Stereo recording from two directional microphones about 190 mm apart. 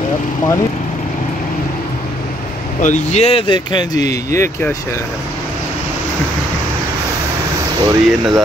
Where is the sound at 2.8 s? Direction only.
40° left (ahead or behind); by 4.7 s 10° left (ahead or behind).